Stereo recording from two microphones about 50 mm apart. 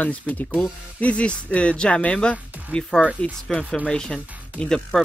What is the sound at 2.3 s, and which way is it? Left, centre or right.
Music, right.